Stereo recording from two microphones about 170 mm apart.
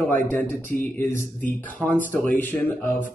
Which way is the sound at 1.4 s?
10° left (ahead or behind).